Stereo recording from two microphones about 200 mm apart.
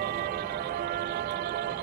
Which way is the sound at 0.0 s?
50° right (ahead or behind).